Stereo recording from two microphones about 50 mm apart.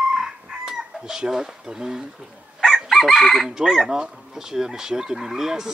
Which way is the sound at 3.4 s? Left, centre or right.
Centre.